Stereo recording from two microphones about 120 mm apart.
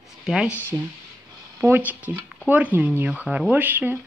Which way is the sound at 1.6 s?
15° right (ahead or behind).